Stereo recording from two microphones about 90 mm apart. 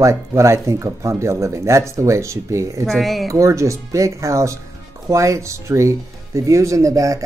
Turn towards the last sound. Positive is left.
turn(degrees=-40)  # may be behind; listen again after turning